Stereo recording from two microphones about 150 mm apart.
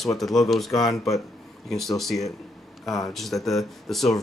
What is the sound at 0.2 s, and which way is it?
Speech, centre (ahead or behind).